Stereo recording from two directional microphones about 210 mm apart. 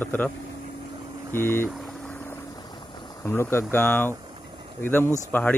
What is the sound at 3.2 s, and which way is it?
Speech, 10° left (ahead or behind).